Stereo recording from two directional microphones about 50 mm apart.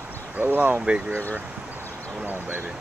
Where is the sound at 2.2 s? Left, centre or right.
Right.